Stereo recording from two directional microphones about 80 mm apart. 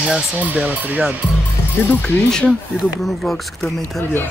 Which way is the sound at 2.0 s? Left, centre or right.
Centre.